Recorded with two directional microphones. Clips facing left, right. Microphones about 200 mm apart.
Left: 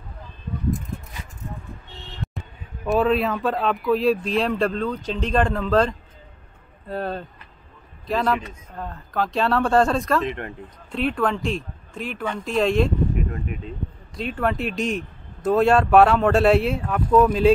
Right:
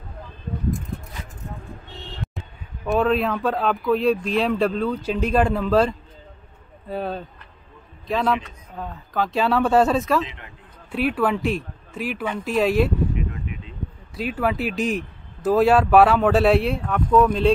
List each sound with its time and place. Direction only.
2.2 s a sound: centre (ahead or behind)
2.8 s speech: centre (ahead or behind)
10.2 s speech: 55° left (ahead or behind)
10.9 s speech: 5° right (ahead or behind)
14.1 s speech: 5° right (ahead or behind)